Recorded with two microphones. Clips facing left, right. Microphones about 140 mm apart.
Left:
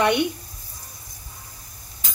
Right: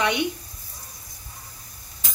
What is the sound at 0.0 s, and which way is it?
Speech, 60° left (ahead or behind).